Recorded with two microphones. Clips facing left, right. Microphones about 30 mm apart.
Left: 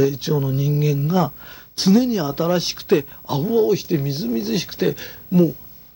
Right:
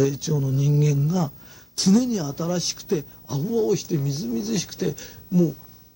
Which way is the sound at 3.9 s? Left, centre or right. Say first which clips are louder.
Left 4 dB; left.